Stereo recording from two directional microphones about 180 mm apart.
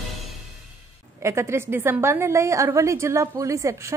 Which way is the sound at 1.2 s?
15° right (ahead or behind).